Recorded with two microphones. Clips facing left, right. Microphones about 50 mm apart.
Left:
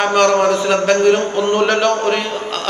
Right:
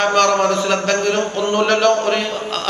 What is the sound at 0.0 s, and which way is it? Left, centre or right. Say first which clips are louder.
A man's voice: left 2 dB; centre.